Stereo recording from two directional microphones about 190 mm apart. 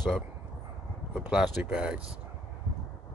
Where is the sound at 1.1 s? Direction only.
5° right (ahead or behind).